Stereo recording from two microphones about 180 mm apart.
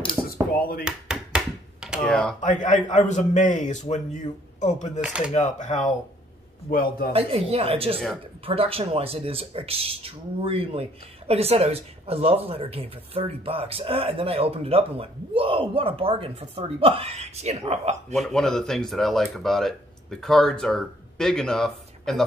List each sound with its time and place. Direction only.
0.2 s a sound: 10° right (ahead or behind)
0.6 s speech: 55° left (ahead or behind)
0.8 s tap: 5° right (ahead or behind)
2.4 s a man's voice: 45° left (ahead or behind)
5.0 s speech: 5° right (ahead or behind)
5.3 s speech: 40° left (ahead or behind)
6.7 s a man's voice: 55° left (ahead or behind)
7.1 s speech: 35° right (ahead or behind)
18.1 s speech: centre (ahead or behind)